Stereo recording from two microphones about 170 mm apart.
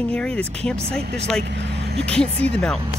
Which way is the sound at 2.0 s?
5° left (ahead or behind).